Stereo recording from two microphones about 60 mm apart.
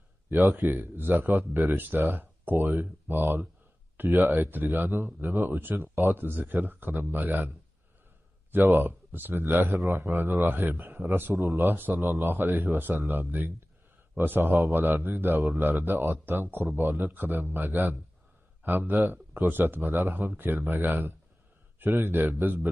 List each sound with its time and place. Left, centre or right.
0.3 s a man's voice: right
10.8 s speech: right
11.5 s a man's voice: right